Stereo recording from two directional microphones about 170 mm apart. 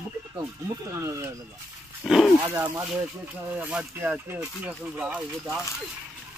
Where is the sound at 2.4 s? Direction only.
20° right (ahead or behind).